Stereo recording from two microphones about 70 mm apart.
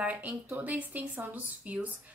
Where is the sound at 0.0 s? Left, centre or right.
Right.